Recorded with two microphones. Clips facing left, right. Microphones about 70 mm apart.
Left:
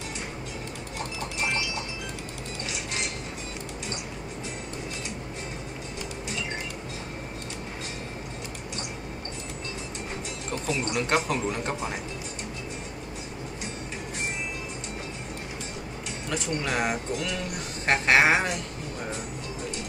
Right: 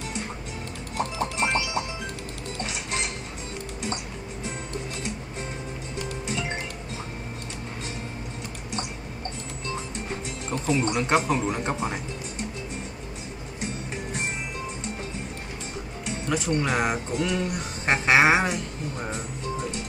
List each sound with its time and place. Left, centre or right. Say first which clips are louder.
1.4 s clip-clop: right 3 dB; right
10.7 s speech: right 5 dB; right
11.2 s speech: right 3 dB; centre
16.3 s speech: right 4 dB; centre
17.1 s speech: right 4 dB; right
17.8 s speech: right 1 dB; centre